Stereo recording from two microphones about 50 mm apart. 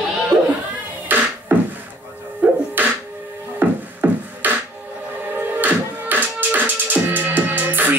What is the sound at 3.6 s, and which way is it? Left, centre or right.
Music, right.